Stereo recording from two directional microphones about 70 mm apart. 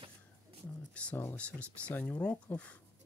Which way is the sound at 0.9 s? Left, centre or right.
Centre.